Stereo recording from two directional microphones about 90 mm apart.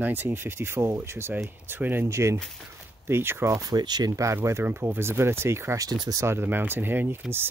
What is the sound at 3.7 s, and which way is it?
Speech, 50° right (ahead or behind).